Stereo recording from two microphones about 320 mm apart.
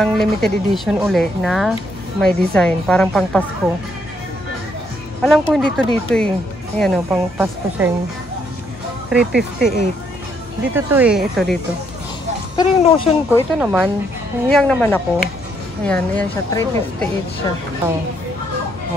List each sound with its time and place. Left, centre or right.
0.0 s speech: centre
5.2 s speech: centre
9.1 s speech: centre
10.7 s speech: centre
12.5 s speech: centre
13.6 s speech: centre